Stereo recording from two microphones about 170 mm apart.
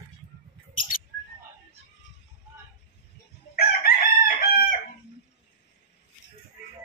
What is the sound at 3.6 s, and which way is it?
Chicken, 60° left (ahead or behind).